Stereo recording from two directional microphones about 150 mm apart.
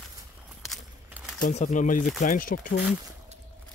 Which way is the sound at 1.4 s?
50° left (ahead or behind).